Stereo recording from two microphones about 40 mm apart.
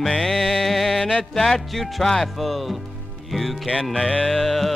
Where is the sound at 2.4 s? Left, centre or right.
Centre.